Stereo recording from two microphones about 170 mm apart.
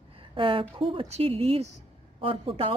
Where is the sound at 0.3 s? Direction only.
30° right (ahead or behind).